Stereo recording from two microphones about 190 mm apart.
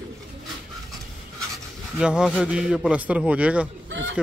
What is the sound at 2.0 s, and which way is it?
Speech, 5° right (ahead or behind).